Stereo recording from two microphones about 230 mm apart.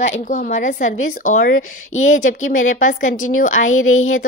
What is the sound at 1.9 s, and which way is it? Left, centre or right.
Speech, left.